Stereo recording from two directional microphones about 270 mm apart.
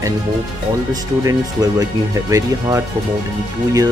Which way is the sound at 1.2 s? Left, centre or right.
Centre.